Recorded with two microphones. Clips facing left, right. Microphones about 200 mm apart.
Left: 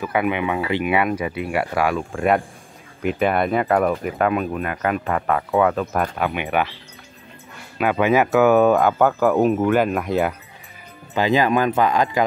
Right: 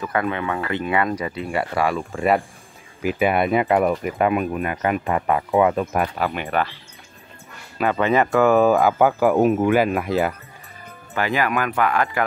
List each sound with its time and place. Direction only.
0.0 s speech: 10° left (ahead or behind)
7.7 s speech: 5° left (ahead or behind)
11.1 s speech: 20° left (ahead or behind)